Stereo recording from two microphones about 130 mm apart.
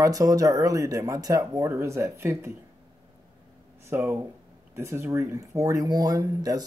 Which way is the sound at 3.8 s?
20° right (ahead or behind).